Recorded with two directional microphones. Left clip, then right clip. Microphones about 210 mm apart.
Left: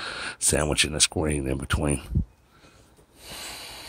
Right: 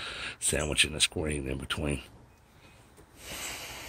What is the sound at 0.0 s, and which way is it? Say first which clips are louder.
Speech: left 5 dB; 30° left (ahead or behind).